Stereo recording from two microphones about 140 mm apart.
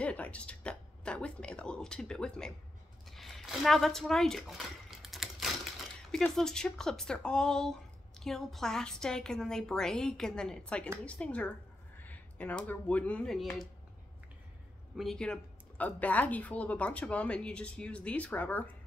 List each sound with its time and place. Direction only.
0.0 s speech: 10° left (ahead or behind)
3.1 s a sound: centre (ahead or behind)
6.1 s a woman's voice: 5° left (ahead or behind)
15.0 s speech: 5° left (ahead or behind)